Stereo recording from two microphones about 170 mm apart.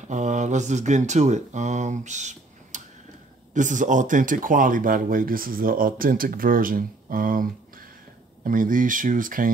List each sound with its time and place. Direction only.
0.1 s speech: 45° right (ahead or behind)